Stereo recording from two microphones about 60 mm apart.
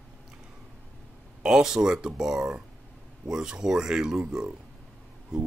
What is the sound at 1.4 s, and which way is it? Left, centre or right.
Speech, centre.